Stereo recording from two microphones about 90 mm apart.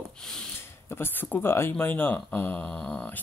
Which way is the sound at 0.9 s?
25° left (ahead or behind).